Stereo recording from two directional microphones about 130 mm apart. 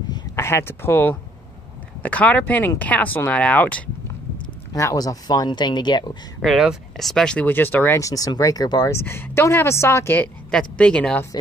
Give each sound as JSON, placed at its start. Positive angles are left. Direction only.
{"t": 0.4, "sound": "speech", "side_deg": 20}
{"t": 4.7, "sound": "speech", "side_deg": 25}
{"t": 6.4, "sound": "speech", "side_deg": -5}
{"t": 8.9, "sound": "speech", "side_deg": 20}